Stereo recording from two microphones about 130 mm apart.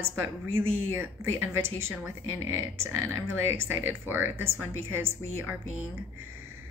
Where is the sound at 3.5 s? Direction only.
15° right (ahead or behind).